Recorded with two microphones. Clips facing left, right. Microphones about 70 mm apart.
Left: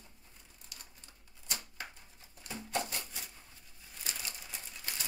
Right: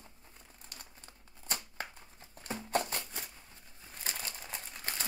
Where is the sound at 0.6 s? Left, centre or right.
Right.